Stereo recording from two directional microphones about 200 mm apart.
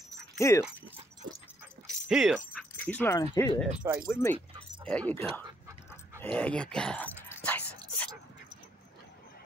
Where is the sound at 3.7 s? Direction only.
10° right (ahead or behind).